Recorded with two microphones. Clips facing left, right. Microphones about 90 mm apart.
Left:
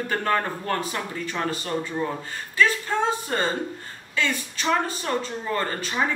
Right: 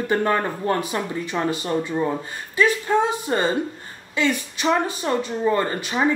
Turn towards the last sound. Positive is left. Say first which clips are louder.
# right 4 dB
turn(degrees=-15)  # may be behind; listen again after turning